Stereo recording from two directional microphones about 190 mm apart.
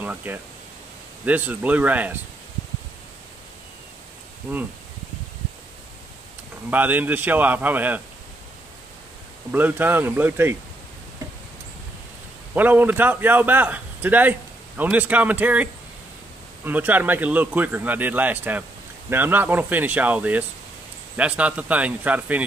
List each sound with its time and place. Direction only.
0.0 s speech: 10° right (ahead or behind)
6.7 s speech: 10° right (ahead or behind)
9.5 s speech: 10° right (ahead or behind)
12.5 s speech: 10° right (ahead or behind)